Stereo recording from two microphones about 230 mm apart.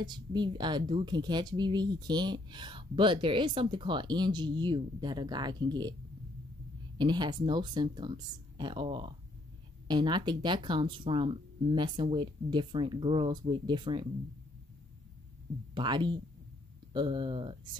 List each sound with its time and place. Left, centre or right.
0.0 s speech: centre
7.0 s speech: centre
15.7 s speech: centre